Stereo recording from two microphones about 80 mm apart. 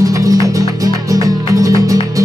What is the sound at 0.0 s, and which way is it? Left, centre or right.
Music, right.